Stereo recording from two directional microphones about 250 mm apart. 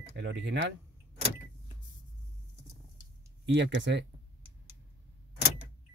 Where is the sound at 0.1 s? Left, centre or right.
Right.